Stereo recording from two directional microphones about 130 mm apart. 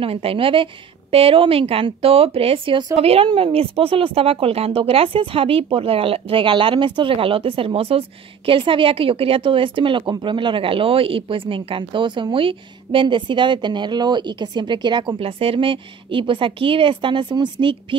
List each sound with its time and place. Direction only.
0.0 s speech: 45° right (ahead or behind)